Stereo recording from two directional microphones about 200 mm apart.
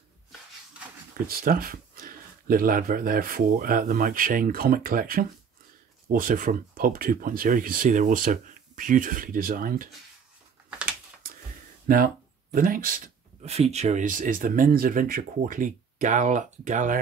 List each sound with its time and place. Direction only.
1.2 s speech: 45° right (ahead or behind)
11.9 s speech: 45° right (ahead or behind)